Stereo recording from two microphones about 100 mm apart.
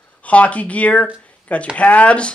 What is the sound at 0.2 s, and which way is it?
Speech, 15° left (ahead or behind).